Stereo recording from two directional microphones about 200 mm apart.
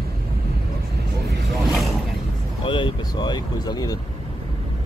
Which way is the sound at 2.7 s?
25° left (ahead or behind).